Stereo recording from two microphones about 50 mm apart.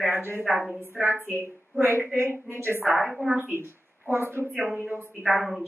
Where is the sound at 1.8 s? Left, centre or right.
Right.